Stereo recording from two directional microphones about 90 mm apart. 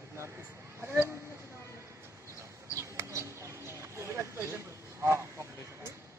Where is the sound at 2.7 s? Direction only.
30° right (ahead or behind).